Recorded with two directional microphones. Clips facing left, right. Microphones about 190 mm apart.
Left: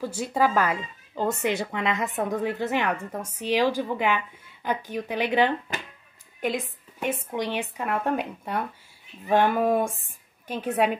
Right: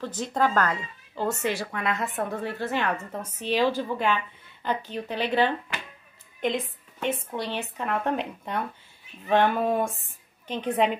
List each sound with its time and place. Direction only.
0.0 s speech: 10° left (ahead or behind)
7.0 s speech: 10° left (ahead or behind)